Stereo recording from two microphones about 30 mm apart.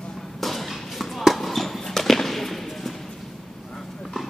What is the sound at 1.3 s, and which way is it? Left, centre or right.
Basketball bounce, centre.